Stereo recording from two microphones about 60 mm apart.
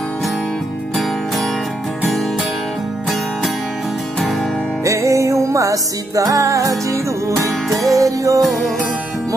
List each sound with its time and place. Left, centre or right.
4.8 s music: right
8.4 s music: centre